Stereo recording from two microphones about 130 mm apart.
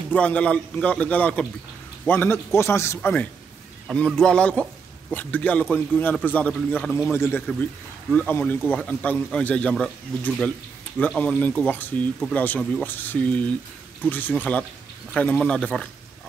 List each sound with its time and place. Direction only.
0.1 s a man's voice: 10° left (ahead or behind)